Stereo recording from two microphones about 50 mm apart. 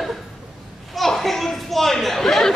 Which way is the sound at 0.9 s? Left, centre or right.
Centre.